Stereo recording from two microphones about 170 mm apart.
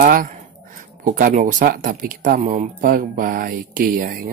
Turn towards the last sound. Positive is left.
turn(degrees=-55)  # may be behind; listen again after turning